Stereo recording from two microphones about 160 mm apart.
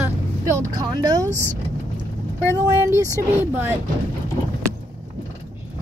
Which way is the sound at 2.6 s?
20° right (ahead or behind).